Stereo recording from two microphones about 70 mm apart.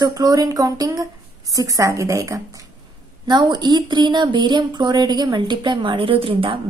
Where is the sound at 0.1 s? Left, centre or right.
Right.